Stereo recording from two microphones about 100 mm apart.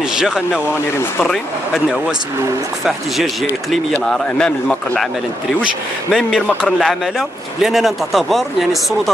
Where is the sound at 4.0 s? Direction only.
5° left (ahead or behind).